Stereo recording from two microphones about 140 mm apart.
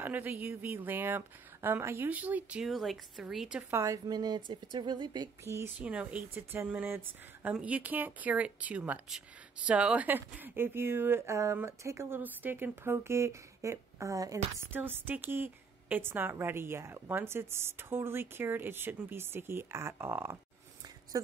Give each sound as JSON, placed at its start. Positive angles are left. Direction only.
{"t": 0.0, "sound": "speech", "side_deg": -15}
{"t": 3.8, "sound": "a woman's voice", "side_deg": -25}
{"t": 5.4, "sound": "speech", "side_deg": -20}